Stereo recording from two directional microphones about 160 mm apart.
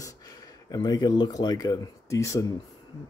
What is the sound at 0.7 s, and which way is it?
Speech, 25° left (ahead or behind).